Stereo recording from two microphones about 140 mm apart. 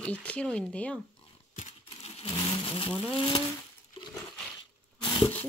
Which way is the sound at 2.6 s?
35° left (ahead or behind).